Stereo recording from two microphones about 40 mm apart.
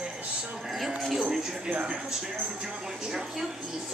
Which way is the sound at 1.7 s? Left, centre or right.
Right.